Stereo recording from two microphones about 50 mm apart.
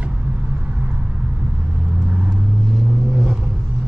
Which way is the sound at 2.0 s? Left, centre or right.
Right.